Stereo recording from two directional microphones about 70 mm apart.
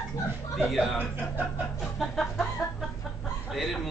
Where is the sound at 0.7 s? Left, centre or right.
Centre.